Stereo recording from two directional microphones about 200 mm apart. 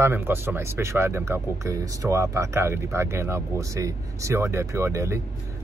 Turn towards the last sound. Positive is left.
turn(degrees=-15)  # may be behind; listen again after turning